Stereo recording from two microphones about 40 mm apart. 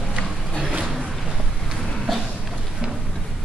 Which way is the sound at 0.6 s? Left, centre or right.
Right.